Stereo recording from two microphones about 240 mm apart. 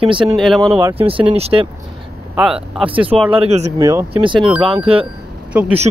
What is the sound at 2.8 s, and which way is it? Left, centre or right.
Speech, right.